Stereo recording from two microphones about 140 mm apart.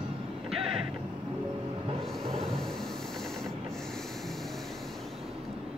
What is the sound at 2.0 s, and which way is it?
Music, 5° left (ahead or behind).